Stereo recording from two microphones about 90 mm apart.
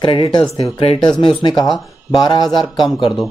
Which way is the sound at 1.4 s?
55° left (ahead or behind).